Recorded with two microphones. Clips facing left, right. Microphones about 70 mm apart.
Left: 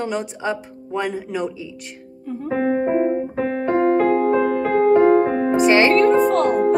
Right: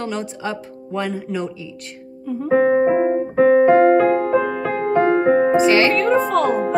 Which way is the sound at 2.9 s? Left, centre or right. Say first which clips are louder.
Right 2 dB; right.